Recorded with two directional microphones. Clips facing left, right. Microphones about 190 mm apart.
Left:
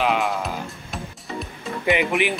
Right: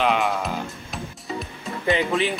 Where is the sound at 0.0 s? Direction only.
5° left (ahead or behind).